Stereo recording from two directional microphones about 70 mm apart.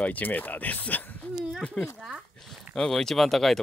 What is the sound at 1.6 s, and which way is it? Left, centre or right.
Speech, centre.